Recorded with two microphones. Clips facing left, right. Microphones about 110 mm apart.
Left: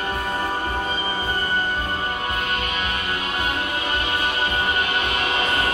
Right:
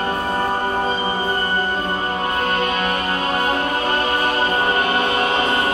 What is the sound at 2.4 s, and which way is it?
Music, 40° right (ahead or behind).